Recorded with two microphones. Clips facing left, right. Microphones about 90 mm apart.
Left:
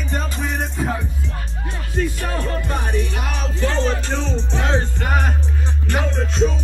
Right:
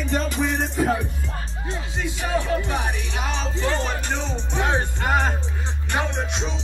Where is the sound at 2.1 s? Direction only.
10° right (ahead or behind).